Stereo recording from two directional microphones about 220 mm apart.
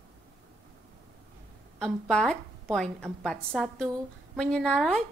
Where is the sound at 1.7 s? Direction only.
Centre (ahead or behind).